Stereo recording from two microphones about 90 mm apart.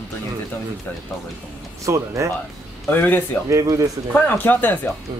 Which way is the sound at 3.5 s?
35° right (ahead or behind).